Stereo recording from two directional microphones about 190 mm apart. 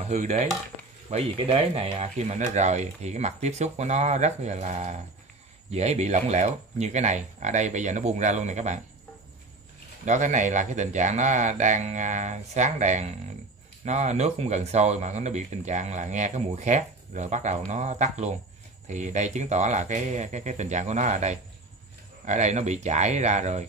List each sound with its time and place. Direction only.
0.0 s chopping: 35° right (ahead or behind)
1.1 s speech: 30° right (ahead or behind)
10.0 s speech: 40° right (ahead or behind)